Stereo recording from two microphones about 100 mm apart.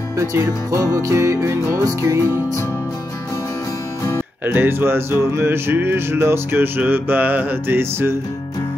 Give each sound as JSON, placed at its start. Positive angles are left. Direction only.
{"t": 0.2, "sound": "music", "side_deg": -30}
{"t": 4.0, "sound": "music", "side_deg": 30}
{"t": 4.6, "sound": "music", "side_deg": -25}